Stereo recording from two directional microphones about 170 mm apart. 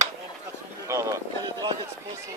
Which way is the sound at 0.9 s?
15° right (ahead or behind).